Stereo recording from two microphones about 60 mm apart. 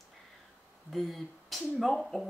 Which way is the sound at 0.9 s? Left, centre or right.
Centre.